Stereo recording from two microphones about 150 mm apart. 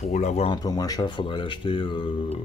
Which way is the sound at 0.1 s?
45° left (ahead or behind).